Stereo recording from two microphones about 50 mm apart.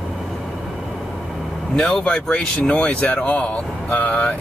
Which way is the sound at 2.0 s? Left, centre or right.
Centre.